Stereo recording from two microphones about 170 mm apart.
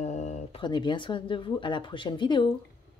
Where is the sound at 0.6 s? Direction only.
25° left (ahead or behind).